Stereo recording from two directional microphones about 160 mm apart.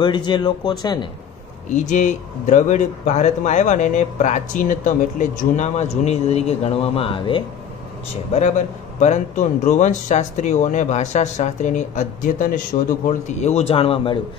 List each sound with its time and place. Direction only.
0.0 s speech: 30° left (ahead or behind)
1.7 s a man's voice: 50° left (ahead or behind); by 7.4 s 35° left (ahead or behind)
8.3 s a man's voice: 45° left (ahead or behind)